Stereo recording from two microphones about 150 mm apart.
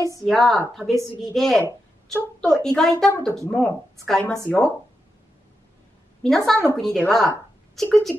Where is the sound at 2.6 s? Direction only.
5° left (ahead or behind).